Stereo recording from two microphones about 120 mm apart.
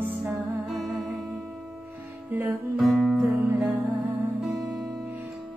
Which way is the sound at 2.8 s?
Centre (ahead or behind).